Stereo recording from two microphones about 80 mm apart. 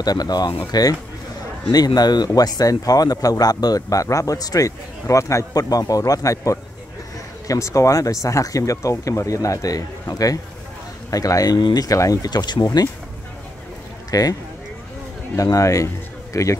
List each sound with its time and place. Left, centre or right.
0.0 s speech: left
12.3 s speech: left
14.1 s speech: left
15.3 s speech: left